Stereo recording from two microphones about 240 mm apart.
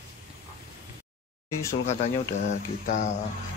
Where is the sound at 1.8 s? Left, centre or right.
Left.